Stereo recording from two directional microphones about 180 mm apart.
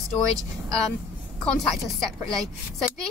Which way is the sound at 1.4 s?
5° left (ahead or behind).